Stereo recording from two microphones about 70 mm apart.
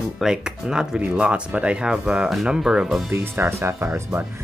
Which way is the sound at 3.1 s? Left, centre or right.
Right.